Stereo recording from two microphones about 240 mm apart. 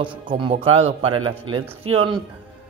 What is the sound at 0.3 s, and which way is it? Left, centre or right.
A man's voice, right.